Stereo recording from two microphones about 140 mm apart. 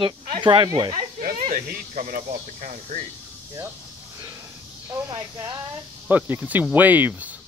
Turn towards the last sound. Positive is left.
turn(degrees=-10)  # may be behind; listen again after turning